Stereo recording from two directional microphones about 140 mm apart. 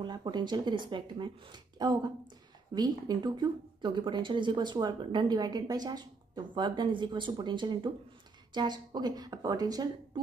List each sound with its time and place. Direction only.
0.0 s a woman's voice: 30° right (ahead or behind)